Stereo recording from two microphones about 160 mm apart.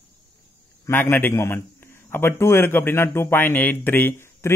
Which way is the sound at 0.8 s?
15° left (ahead or behind).